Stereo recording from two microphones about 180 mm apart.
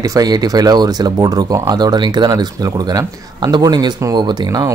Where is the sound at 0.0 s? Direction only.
20° right (ahead or behind).